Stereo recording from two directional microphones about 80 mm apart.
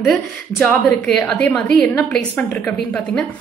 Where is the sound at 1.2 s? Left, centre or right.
Centre.